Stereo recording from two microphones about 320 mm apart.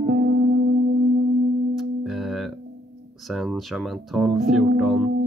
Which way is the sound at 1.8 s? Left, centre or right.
Centre.